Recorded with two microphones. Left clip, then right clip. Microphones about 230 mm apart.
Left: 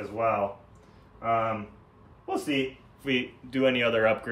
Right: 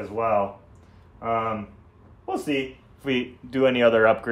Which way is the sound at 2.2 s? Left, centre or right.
Centre.